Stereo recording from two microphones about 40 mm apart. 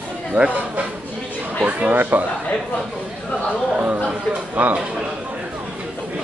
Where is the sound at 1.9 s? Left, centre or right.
Right.